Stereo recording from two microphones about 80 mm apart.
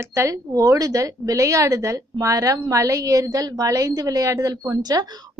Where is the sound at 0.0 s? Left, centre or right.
Right.